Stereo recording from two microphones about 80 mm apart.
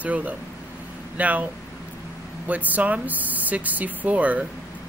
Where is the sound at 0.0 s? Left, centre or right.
Centre.